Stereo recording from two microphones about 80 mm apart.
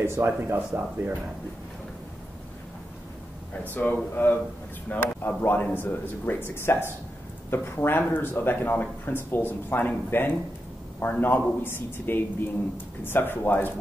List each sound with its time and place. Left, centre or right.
0.0 s speech: right
3.7 s a man's voice: left